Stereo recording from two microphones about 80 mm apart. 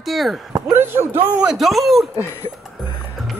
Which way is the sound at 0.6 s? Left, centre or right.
Right.